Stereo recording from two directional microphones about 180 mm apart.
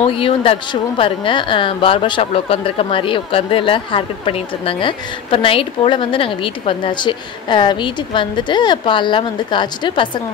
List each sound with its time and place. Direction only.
0.0 s speech: 30° left (ahead or behind)